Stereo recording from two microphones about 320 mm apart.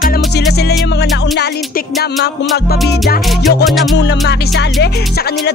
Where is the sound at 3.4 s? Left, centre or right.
Centre.